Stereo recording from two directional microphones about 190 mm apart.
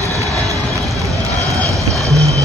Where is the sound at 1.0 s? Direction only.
15° right (ahead or behind).